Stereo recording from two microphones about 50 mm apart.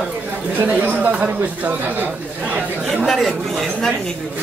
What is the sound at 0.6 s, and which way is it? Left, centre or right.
Speech, right.